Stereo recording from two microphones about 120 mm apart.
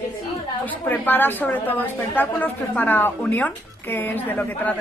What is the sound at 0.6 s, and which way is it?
A woman's voice, 15° left (ahead or behind).